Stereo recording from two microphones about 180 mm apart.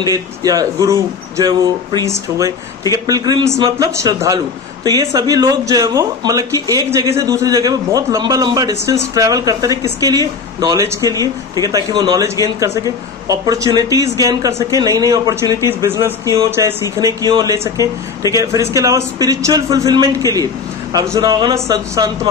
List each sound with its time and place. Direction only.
0.0 s speech: 20° right (ahead or behind)